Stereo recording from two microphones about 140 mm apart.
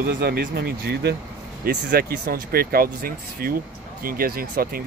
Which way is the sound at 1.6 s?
90° right.